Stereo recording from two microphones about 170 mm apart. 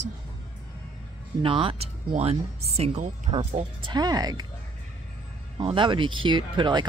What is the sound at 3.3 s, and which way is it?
Speech, 25° right (ahead or behind).